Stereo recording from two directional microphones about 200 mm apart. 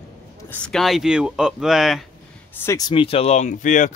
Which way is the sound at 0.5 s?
5° left (ahead or behind).